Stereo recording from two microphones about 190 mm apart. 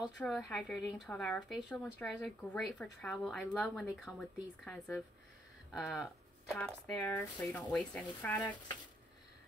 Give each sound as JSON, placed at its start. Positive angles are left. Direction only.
{"t": 0.0, "sound": "speech", "side_deg": 0}